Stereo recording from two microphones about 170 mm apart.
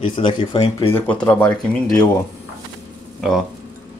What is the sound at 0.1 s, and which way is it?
Speech, 30° left (ahead or behind).